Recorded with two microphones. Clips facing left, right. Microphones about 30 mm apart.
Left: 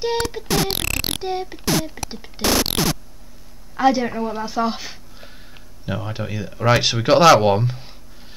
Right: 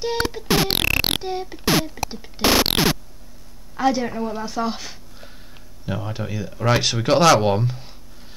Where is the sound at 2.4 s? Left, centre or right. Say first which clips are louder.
Right 2 dB; right.